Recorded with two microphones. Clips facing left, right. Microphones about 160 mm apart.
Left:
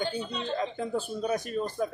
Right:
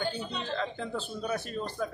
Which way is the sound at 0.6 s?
15° left (ahead or behind).